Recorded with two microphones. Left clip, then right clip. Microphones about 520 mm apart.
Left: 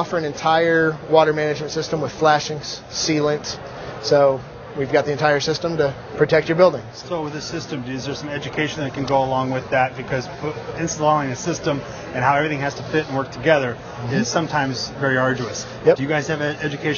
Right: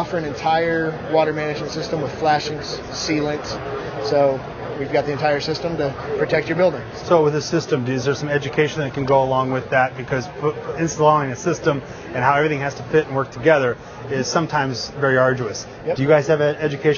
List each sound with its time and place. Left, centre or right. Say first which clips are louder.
0.0 s a man's voice: left 1 dB; left
7.1 s a man's voice: right 10 dB; right